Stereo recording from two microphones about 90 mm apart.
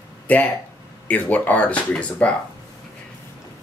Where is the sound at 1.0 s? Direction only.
15° left (ahead or behind).